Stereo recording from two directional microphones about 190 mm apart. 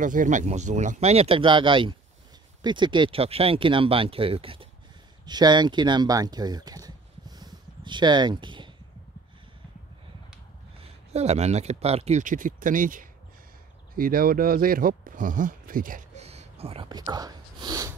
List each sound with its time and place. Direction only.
0.0 s speech: 45° right (ahead or behind); by 8.7 s 25° right (ahead or behind)
10.8 s speech: 35° right (ahead or behind)
17.0 s a sound: 20° right (ahead or behind)